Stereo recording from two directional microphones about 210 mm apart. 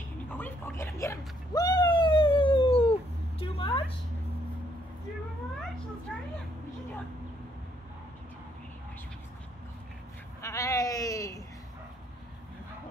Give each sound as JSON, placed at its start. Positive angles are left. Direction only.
{"t": 0.3, "sound": "cat", "side_deg": 10}
{"t": 3.3, "sound": "a sound", "side_deg": 25}
{"t": 10.4, "sound": "sheep", "side_deg": 15}